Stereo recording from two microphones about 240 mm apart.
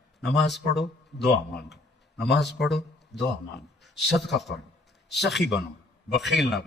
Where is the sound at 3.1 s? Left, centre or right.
Left.